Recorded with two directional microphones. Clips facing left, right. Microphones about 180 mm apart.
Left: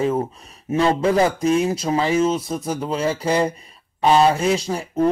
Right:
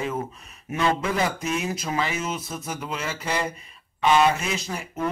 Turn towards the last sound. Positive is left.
turn(degrees=30)  # may be behind; listen again after turning